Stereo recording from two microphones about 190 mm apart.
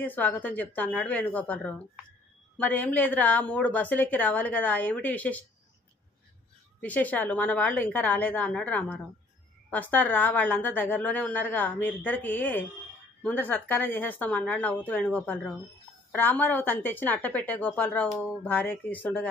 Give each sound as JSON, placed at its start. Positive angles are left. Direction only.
{"t": 0.0, "sound": "a woman's voice", "side_deg": 10}
{"t": 6.8, "sound": "a woman's voice", "side_deg": 10}